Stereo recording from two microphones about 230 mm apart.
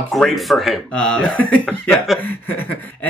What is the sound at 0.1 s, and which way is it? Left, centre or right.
Speech, centre.